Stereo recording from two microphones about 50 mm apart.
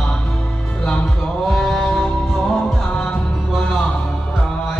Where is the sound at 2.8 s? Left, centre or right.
Left.